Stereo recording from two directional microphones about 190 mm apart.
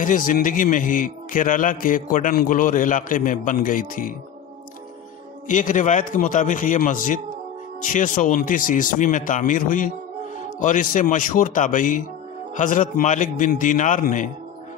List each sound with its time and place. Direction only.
0.0 s a man's voice: 45° left (ahead or behind)
5.5 s a man's voice: 40° left (ahead or behind)